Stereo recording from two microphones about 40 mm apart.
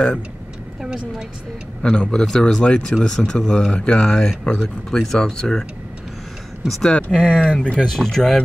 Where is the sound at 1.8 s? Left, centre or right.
Left.